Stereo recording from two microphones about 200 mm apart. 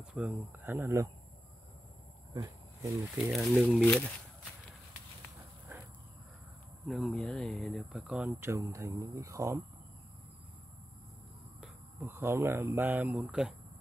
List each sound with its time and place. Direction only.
0.0 s speech: 5° right (ahead or behind)
2.3 s speech: 15° right (ahead or behind)
3.3 s speech: centre (ahead or behind)
6.9 s speech: centre (ahead or behind); by 9.6 s 15° right (ahead or behind)
12.0 s speech: 10° right (ahead or behind)